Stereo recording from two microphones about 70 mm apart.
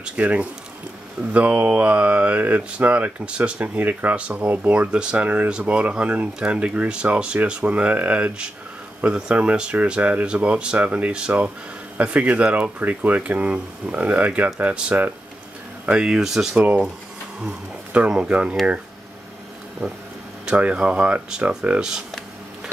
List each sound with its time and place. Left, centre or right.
0.0 s mantra: centre
4.7 s speech: centre
12.0 s mantra: centre
15.8 s speech: centre
16.5 s mantra: right
17.5 s speech: centre
20.4 s speech: centre